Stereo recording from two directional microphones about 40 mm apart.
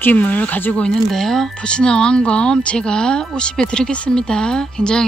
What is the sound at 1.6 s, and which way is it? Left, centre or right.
Speech, left.